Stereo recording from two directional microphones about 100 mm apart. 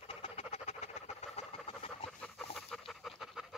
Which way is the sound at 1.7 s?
70° left (ahead or behind).